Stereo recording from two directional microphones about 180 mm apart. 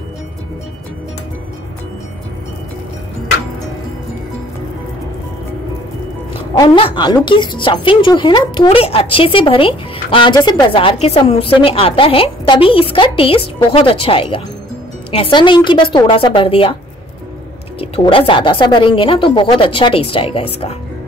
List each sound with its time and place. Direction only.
6.6 s speech: 30° left (ahead or behind)
17.7 s speech: 30° left (ahead or behind)